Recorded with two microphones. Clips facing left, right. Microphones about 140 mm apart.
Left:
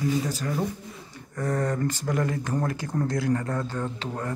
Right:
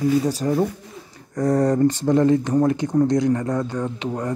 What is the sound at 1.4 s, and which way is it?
Speech, 15° right (ahead or behind).